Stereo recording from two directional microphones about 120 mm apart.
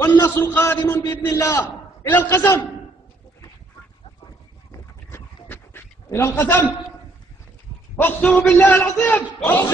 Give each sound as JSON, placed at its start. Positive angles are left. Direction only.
{"t": 0.0, "sound": "a man's voice", "side_deg": 20}
{"t": 5.1, "sound": "dog", "side_deg": 20}
{"t": 7.9, "sound": "a man's voice", "side_deg": 10}